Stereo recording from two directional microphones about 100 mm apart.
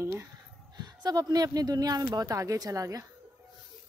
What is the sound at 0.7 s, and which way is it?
A woman's voice, 45° right (ahead or behind).